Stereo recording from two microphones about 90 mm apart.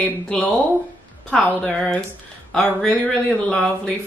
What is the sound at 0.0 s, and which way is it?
Speech, 20° left (ahead or behind).